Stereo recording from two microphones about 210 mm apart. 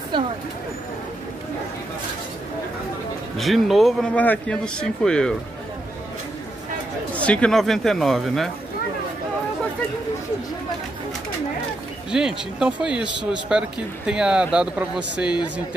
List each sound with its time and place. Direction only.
0.1 s vehicle: 20° right (ahead or behind)
3.3 s speech: centre (ahead or behind)
7.2 s speech: 5° left (ahead or behind)
12.1 s speech: 5° right (ahead or behind)